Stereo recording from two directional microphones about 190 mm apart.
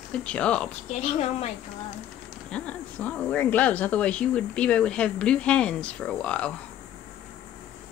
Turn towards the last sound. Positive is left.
turn(degrees=5)  # may be behind; listen again after turning